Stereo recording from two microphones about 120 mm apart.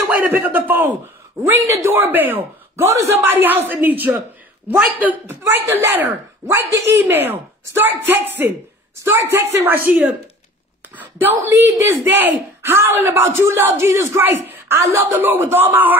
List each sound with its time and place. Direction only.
0.1 s speech: 15° right (ahead or behind)